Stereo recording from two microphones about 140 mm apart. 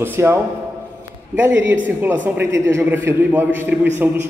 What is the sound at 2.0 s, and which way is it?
A man's voice, 15° right (ahead or behind).